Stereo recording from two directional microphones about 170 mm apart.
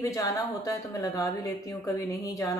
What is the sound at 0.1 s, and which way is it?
Speech, 20° left (ahead or behind).